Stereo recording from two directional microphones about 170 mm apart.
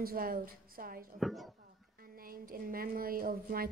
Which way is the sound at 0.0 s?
60° right (ahead or behind).